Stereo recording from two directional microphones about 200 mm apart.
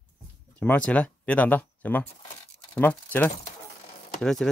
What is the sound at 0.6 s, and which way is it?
Speech, 5° left (ahead or behind).